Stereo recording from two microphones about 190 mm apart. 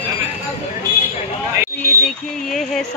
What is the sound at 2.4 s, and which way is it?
Speech, centre (ahead or behind).